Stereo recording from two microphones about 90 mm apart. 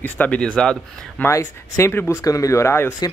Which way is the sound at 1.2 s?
35° left (ahead or behind).